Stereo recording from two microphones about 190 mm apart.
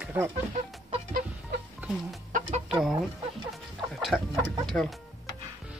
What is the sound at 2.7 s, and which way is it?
Speech, centre (ahead or behind).